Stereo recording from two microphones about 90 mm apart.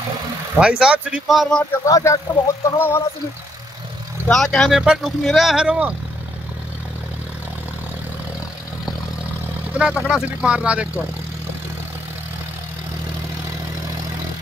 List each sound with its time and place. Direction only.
0.6 s speech: 10° right (ahead or behind)
1.3 s speech: centre (ahead or behind)
1.9 s speech: 35° left (ahead or behind)
4.3 s speech: 5° left (ahead or behind); by 5.9 s 15° right (ahead or behind)
9.8 s speech: 15° right (ahead or behind)